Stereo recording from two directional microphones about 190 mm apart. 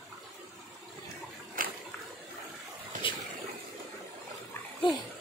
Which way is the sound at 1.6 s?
45° right (ahead or behind).